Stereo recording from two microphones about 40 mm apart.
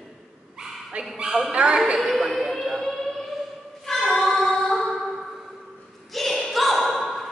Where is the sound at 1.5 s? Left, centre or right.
Right.